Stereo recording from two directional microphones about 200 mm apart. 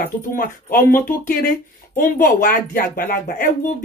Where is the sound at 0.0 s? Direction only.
45° left (ahead or behind).